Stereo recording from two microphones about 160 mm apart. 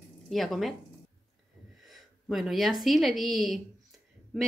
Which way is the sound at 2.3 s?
Centre (ahead or behind).